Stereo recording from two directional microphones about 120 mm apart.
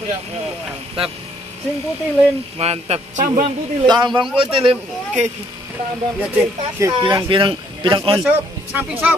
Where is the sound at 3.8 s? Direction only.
35° right (ahead or behind).